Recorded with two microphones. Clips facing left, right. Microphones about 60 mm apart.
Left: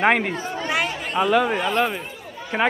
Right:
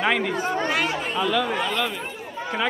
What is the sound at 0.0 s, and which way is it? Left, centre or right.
A man's voice, left.